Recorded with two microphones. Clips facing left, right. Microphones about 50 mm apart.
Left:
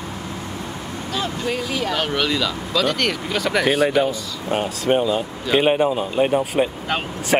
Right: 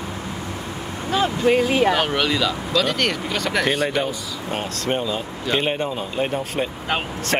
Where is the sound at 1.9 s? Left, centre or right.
Centre.